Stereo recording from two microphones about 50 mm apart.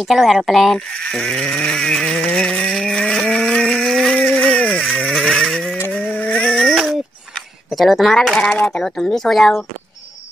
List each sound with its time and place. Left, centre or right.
0.1 s speech: centre
0.7 s speech: left
2.2 s a sound: centre
4.1 s vehicle: centre
5.9 s a sound: left
6.5 s a sound: centre
7.7 s speech: centre
8.5 s speech: left
8.9 s speech: centre